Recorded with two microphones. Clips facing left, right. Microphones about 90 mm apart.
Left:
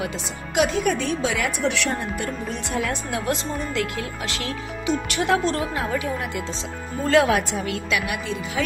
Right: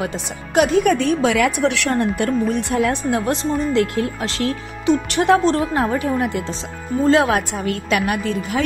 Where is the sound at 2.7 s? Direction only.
50° right (ahead or behind).